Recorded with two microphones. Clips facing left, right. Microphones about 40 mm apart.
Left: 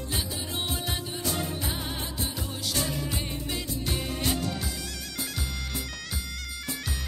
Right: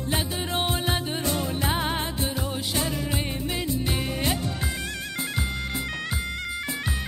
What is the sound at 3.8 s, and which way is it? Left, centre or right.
Music, right.